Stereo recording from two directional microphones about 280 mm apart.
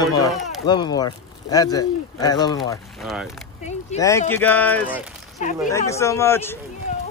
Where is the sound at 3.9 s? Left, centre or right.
Left.